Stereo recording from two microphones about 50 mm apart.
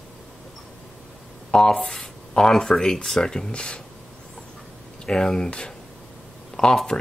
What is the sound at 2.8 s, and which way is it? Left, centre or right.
Speech, centre.